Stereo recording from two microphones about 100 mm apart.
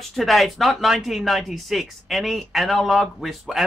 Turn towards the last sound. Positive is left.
turn(degrees=0)  # may be behind; listen again after turning